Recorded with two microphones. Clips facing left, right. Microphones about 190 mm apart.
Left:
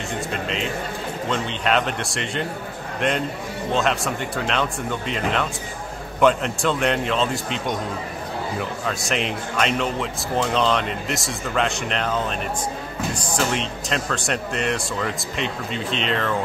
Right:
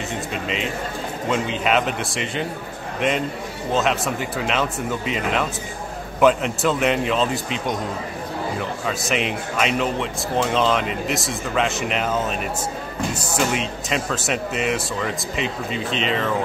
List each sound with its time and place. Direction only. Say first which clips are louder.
0.3 s a man's voice: even; centre (ahead or behind)